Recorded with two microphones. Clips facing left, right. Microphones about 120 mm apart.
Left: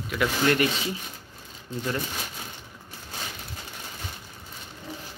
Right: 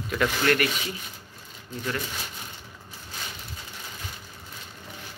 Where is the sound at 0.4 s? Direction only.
15° left (ahead or behind).